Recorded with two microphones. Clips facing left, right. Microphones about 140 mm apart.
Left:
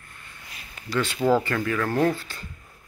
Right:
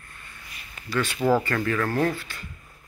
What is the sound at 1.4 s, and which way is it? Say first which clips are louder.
Speech: even; 10° left (ahead or behind).